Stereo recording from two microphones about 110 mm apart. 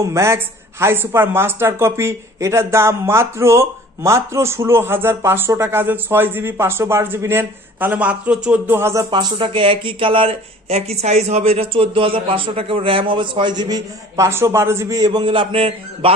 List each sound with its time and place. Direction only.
0.0 s speech: 25° right (ahead or behind)
9.1 s speech: 50° right (ahead or behind)